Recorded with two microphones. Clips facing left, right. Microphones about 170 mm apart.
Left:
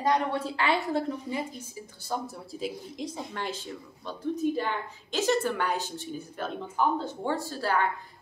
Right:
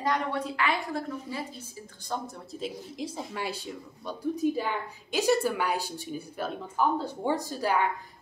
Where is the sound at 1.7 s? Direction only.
10° left (ahead or behind).